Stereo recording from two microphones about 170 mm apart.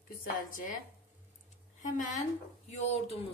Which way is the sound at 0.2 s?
50° left (ahead or behind).